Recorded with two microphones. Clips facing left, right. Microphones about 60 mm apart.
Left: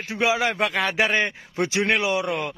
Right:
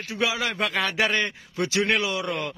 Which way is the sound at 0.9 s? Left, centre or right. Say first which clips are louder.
Left 2 dB; left.